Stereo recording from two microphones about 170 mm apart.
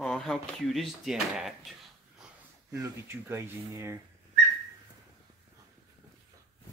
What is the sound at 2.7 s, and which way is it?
Speech, 15° right (ahead or behind).